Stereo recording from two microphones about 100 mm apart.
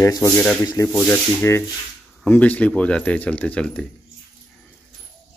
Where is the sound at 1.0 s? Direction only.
25° left (ahead or behind).